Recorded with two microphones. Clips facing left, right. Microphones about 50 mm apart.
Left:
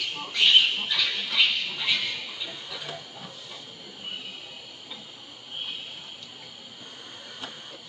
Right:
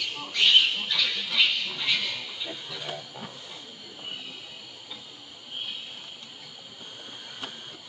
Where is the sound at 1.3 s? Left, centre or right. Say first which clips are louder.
Left 1 dB; centre.